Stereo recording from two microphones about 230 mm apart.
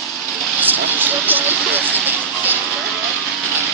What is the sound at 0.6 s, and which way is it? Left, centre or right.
Vehicle, centre.